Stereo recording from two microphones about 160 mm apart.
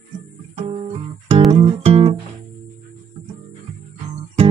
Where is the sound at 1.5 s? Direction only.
40° right (ahead or behind).